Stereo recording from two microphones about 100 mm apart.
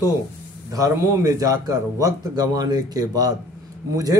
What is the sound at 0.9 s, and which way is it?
A man's voice, 35° right (ahead or behind).